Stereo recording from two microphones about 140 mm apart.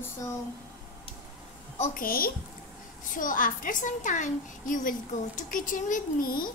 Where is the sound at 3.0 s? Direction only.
75° left (ahead or behind).